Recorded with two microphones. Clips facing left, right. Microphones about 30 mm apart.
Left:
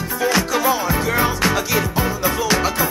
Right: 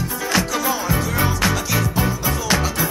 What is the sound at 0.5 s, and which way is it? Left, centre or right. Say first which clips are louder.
Music: left 3 dB; centre.